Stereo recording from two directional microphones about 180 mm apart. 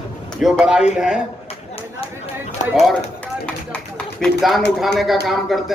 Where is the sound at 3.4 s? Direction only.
5° left (ahead or behind).